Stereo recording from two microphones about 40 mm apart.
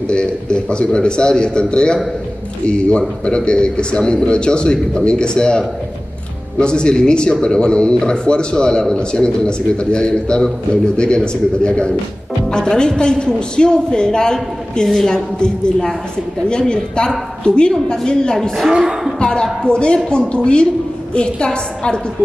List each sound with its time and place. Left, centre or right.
0.1 s a man's voice: left
6.6 s a man's voice: left
15.3 s a man's voice: left
18.7 s speech: right
19.2 s a man's voice: centre